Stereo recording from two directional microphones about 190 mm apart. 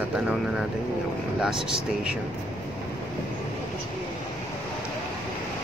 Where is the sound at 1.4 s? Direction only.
5° right (ahead or behind).